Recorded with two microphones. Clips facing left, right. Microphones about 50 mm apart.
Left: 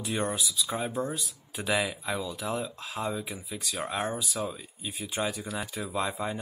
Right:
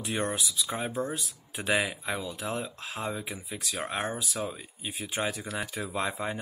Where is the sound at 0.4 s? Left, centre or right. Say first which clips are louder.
Left 1 dB; right.